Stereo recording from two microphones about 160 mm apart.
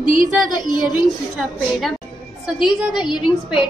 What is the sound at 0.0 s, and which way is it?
Speech, 60° right (ahead or behind).